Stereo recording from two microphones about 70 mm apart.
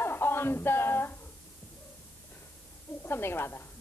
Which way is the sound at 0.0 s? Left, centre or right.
Left.